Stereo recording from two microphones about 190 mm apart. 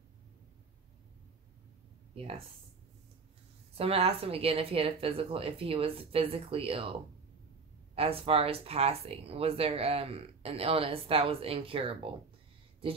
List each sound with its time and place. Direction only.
2.1 s speech: 30° right (ahead or behind)
3.7 s speech: 30° right (ahead or behind)